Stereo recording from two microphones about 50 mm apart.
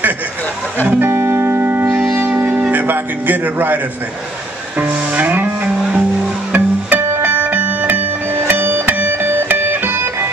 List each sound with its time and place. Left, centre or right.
1.0 s music: right
1.7 s music: right
6.5 s music: right
8.4 s music: right